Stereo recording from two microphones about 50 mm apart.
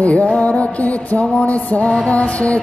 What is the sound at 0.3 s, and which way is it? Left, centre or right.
Music, left.